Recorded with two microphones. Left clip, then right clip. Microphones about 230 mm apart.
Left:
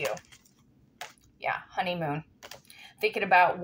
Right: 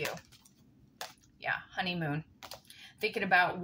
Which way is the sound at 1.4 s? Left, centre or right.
Centre.